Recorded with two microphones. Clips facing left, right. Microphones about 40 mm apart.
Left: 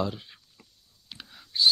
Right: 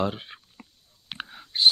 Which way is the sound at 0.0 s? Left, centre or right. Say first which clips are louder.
Right 3 dB; right.